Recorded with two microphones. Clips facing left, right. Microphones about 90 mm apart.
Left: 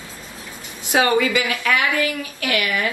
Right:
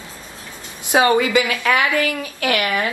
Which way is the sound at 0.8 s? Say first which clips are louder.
Right 2 dB; 20° right (ahead or behind).